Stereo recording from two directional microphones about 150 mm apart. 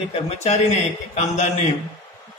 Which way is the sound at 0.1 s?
45° left (ahead or behind).